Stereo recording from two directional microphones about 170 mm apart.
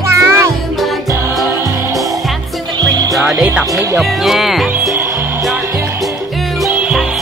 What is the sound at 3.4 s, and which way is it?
Speech, 5° right (ahead or behind).